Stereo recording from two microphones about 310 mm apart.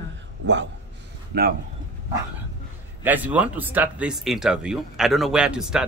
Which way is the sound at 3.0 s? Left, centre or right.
Centre.